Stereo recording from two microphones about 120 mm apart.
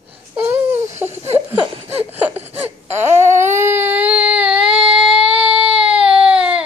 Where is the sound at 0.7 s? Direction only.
75° right (ahead or behind).